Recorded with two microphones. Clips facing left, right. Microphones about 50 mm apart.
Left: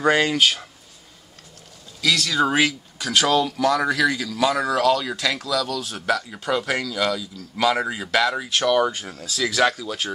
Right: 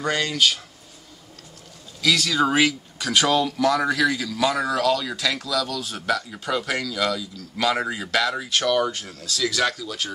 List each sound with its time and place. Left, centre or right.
0.0 s speech: centre
2.0 s speech: centre